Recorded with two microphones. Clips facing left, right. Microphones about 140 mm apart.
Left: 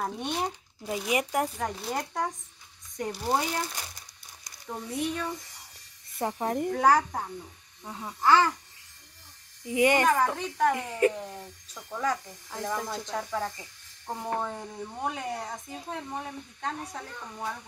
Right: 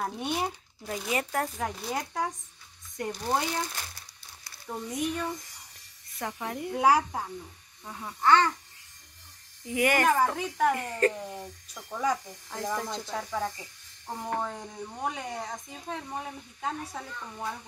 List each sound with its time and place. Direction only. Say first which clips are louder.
0.0 s speech: even; centre (ahead or behind)
0.8 s speech: left 3 dB; 15° left (ahead or behind)
1.6 s speech: left 1 dB; centre (ahead or behind)
4.9 s speech: even; 10° right (ahead or behind)
6.1 s jingle bell: left 6 dB; 30° left (ahead or behind)
6.7 s speech: right 1 dB; 10° right (ahead or behind)
7.8 s speech: even; 10° left (ahead or behind)
9.7 s speech: left 3 dB; 20° left (ahead or behind)
10.0 s speech: even; 5° right (ahead or behind)
10.7 s speech: left 1 dB; 10° left (ahead or behind)
11.2 s speech: right 2 dB; 10° right (ahead or behind)
12.4 s speech: even; centre (ahead or behind)